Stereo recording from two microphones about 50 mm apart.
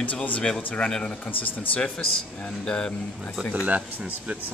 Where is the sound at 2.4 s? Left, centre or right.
Centre.